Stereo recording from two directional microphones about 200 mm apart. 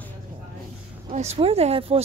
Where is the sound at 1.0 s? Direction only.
30° right (ahead or behind).